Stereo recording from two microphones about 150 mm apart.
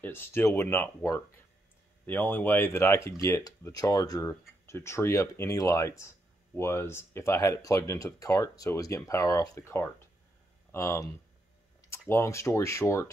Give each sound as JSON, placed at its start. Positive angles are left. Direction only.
{"t": 0.0, "sound": "speech", "side_deg": 15}
{"t": 12.1, "sound": "speech", "side_deg": 20}